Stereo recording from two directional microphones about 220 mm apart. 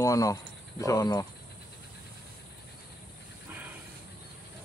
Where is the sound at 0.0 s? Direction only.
15° left (ahead or behind).